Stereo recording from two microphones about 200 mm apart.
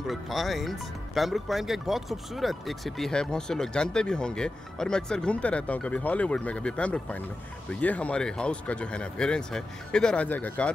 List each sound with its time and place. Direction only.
0.0 s speech: centre (ahead or behind)